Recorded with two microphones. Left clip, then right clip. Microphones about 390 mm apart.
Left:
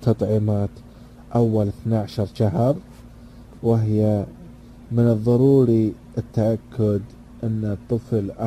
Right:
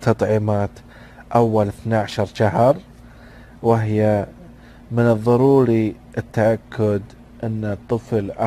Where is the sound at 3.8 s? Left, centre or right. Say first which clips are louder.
Right 4 dB; right.